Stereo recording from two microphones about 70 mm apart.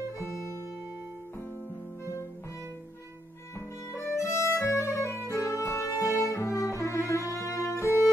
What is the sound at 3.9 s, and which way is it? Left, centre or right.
Music, left.